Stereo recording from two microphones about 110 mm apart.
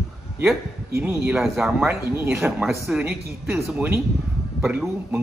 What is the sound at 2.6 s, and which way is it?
Speech, centre (ahead or behind).